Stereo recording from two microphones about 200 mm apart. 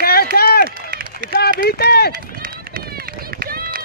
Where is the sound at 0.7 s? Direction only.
45° right (ahead or behind).